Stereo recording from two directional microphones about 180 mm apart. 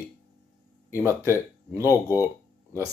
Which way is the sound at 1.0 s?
15° right (ahead or behind).